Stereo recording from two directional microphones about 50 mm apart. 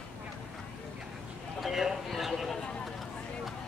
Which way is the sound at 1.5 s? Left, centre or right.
Centre.